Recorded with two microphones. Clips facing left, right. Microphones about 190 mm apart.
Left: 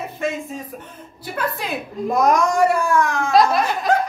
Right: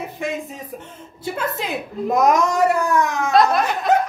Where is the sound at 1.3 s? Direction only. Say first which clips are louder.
Left 1 dB; 20° right (ahead or behind).